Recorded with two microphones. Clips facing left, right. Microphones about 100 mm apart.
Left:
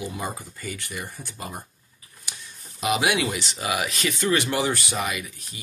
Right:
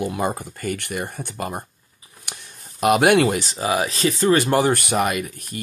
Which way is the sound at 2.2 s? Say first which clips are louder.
Right 3 dB; 60° right (ahead or behind).